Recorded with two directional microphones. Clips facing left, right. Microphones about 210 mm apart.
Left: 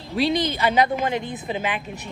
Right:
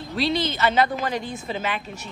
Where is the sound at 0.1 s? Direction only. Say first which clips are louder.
Left 3 dB; 15° left (ahead or behind).